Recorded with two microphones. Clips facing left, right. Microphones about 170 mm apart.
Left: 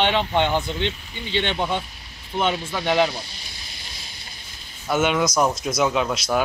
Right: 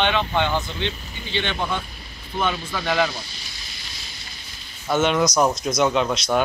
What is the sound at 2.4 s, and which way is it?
Speech, 20° left (ahead or behind).